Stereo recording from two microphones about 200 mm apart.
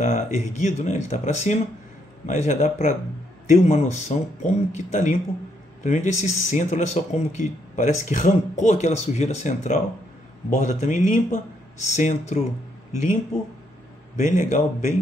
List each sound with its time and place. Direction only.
0.0 s speech: 35° left (ahead or behind)